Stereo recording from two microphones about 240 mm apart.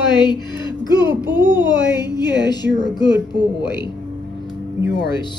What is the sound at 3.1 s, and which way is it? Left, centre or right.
Speech, right.